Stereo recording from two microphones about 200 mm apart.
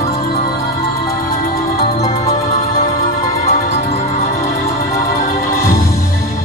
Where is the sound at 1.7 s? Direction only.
30° left (ahead or behind).